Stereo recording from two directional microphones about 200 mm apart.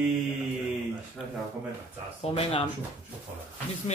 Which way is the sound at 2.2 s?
30° left (ahead or behind).